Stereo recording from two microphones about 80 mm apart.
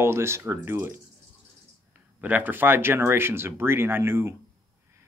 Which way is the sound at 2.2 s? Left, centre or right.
Right.